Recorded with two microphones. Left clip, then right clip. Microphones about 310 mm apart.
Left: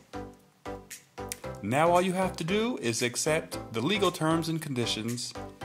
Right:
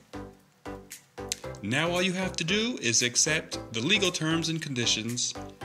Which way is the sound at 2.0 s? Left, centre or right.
Centre.